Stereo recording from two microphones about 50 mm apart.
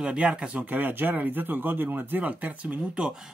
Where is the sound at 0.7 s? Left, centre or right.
Right.